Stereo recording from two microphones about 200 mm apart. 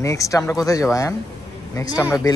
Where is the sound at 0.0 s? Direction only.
15° left (ahead or behind).